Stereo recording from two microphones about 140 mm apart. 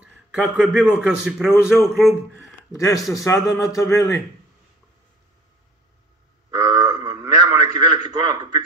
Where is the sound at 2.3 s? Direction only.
20° left (ahead or behind).